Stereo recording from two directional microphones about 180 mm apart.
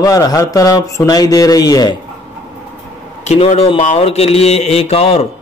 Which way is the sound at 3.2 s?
35° left (ahead or behind).